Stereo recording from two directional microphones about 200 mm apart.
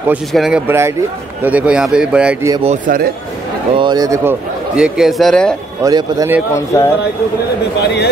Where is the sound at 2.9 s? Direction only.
45° right (ahead or behind).